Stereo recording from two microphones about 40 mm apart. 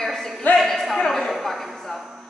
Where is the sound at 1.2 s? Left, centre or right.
Centre.